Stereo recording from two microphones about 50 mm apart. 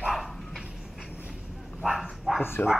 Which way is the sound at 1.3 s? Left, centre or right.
Centre.